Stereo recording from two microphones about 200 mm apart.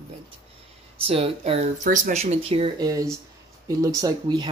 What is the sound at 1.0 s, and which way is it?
Speech, 30° right (ahead or behind).